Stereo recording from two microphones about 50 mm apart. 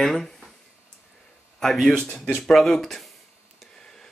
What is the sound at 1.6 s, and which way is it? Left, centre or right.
A man's voice, centre.